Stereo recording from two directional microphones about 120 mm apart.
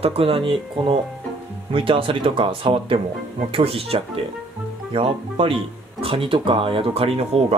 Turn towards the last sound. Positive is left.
turn(degrees=-55)  # may be behind; listen again after turning